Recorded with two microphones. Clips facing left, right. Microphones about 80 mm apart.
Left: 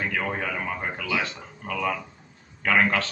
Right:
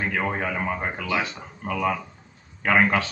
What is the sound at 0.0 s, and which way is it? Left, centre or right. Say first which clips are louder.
Speech: right 2 dB; centre.